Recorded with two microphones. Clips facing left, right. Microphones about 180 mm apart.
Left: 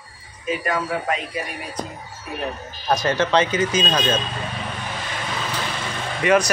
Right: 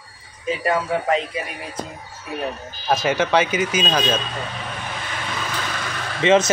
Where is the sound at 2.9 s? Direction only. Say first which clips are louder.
Right 1 dB; 5° right (ahead or behind).